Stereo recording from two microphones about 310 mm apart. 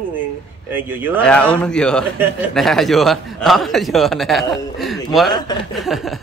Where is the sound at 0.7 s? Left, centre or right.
Centre.